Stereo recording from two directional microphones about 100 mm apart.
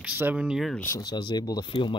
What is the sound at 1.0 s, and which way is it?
Speech, 45° left (ahead or behind).